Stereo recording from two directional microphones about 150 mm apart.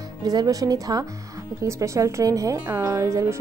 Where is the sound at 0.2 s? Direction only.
25° right (ahead or behind).